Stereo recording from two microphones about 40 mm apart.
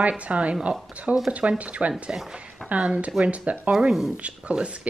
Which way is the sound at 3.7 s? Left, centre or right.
Centre.